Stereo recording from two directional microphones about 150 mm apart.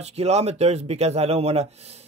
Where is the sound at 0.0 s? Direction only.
45° right (ahead or behind).